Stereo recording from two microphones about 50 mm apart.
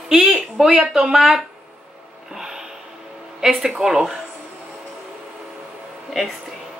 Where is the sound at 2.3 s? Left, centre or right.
Centre.